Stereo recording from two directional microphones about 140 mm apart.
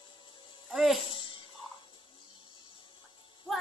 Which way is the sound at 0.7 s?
Centre (ahead or behind).